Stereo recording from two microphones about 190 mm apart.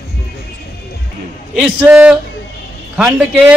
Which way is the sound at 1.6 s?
5° right (ahead or behind).